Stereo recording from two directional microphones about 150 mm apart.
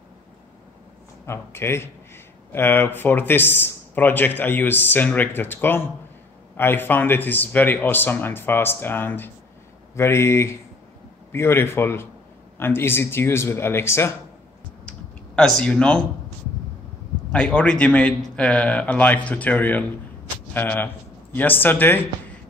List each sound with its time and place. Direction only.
1.2 s speech: 15° left (ahead or behind)
14.9 s computer keyboard: 5° left (ahead or behind)
17.3 s speech: 10° left (ahead or behind)